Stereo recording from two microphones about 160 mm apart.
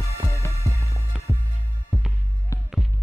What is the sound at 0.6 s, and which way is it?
Music, 20° right (ahead or behind).